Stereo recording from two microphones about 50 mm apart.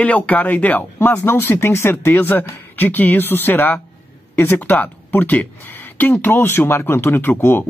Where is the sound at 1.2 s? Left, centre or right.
Left.